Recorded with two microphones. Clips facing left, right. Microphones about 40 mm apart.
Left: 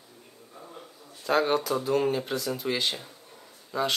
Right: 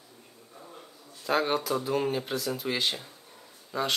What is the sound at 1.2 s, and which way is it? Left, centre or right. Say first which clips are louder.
Speech: left 2 dB; centre.